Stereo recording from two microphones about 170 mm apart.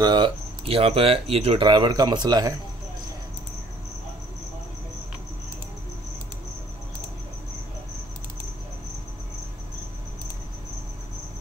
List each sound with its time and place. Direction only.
0.0 s speech: 25° right (ahead or behind)